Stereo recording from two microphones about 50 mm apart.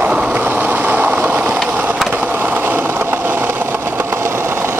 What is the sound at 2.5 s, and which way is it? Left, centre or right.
Vehicle, right.